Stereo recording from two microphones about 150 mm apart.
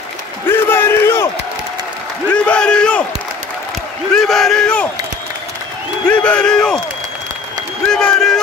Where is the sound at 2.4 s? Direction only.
5° left (ahead or behind).